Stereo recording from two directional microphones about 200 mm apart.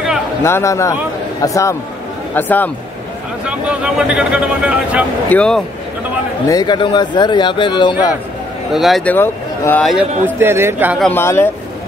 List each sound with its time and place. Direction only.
0.4 s speech: 15° left (ahead or behind)
3.4 s a man's voice: 5° right (ahead or behind)
6.4 s speech: 20° left (ahead or behind)
8.7 s speech: centre (ahead or behind)
9.8 s speech: 5° right (ahead or behind)
11.0 s speech: 10° left (ahead or behind)